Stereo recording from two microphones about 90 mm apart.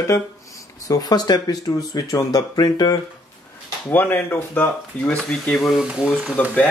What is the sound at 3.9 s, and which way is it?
Speech, 20° left (ahead or behind).